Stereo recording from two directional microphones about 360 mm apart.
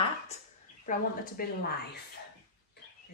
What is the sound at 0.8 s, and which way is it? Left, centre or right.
Speech, left.